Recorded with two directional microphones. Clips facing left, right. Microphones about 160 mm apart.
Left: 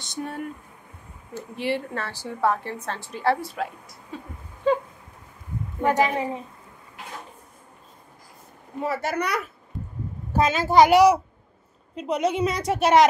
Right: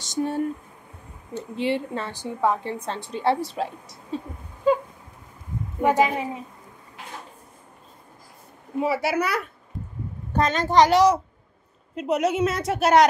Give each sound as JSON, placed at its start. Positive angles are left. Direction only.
{"t": 0.0, "sound": "speech", "side_deg": -40}
{"t": 1.6, "sound": "a woman's voice", "side_deg": -20}
{"t": 5.8, "sound": "a woman's voice", "side_deg": -10}
{"t": 8.8, "sound": "a child's voice", "side_deg": -10}
{"t": 11.9, "sound": "a woman's voice", "side_deg": -5}